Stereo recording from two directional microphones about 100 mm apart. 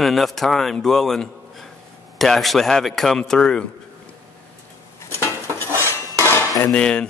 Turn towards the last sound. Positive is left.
turn(degrees=10)  # may be behind; listen again after turning